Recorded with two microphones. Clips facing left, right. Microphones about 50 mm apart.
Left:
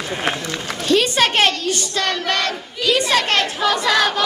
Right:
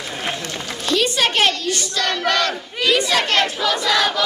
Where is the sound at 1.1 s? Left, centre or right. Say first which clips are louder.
Left 2 dB; left.